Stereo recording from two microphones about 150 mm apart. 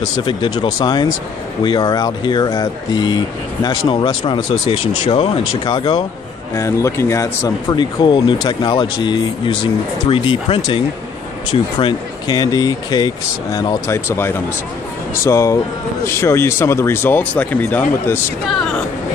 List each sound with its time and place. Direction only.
0.2 s speech: 30° left (ahead or behind)
6.5 s speech: 20° left (ahead or behind)
18.5 s speech: 5° left (ahead or behind)